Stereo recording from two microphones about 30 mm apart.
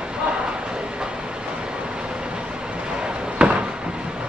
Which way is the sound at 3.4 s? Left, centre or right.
Right.